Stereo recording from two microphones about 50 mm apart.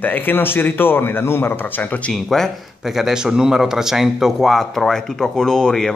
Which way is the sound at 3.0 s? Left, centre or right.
Centre.